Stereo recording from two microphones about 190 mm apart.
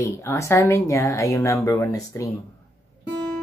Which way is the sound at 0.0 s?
15° left (ahead or behind).